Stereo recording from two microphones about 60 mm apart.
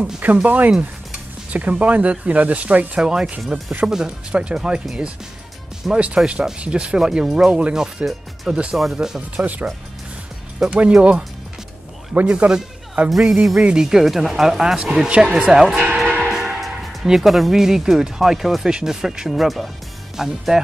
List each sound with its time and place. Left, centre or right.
0.0 s speech: right
3.0 s speech: centre
5.9 s speech: centre
9.4 s speech: right
10.7 s a man's voice: right
13.6 s speech: centre
13.8 s speech: centre
15.0 s speech: centre
15.7 s speech: right
16.3 s speech: centre